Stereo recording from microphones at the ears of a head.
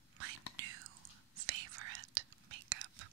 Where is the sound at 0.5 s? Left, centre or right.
Right.